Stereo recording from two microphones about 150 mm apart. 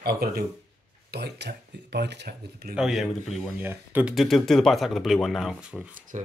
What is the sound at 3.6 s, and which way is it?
Speech, 15° right (ahead or behind).